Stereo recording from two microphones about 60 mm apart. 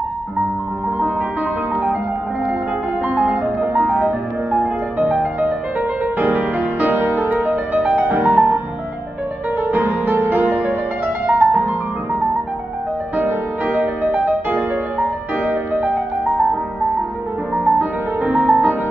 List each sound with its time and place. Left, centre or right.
3.1 s music: right
9.6 s music: right
13.1 s music: right
17.6 s music: right